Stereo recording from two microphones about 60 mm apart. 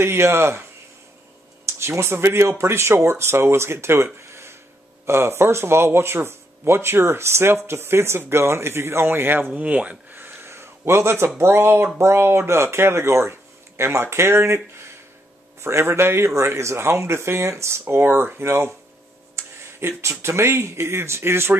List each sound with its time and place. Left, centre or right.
0.0 s speech: right
1.7 s speech: right
9.6 s speech: right
10.1 s a sound: right
11.3 s speech: right
15.6 s speech: right
17.8 s speech: right